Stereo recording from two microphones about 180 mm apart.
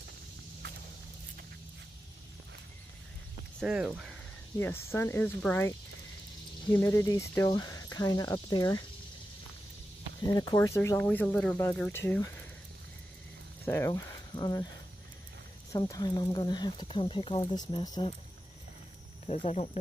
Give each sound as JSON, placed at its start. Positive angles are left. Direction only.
{"t": 3.5, "sound": "speech", "side_deg": -5}
{"t": 4.6, "sound": "speech", "side_deg": 15}
{"t": 10.2, "sound": "speech", "side_deg": 20}
{"t": 13.7, "sound": "speech", "side_deg": 15}
{"t": 15.7, "sound": "speech", "side_deg": 20}
{"t": 19.2, "sound": "speech", "side_deg": 35}